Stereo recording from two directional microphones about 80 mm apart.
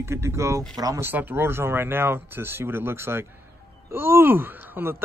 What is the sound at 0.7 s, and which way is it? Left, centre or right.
Speech, right.